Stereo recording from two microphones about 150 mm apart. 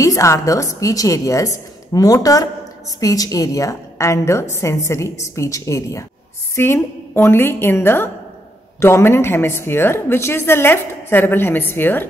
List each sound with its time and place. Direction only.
0.0 s a woman's voice: 20° left (ahead or behind)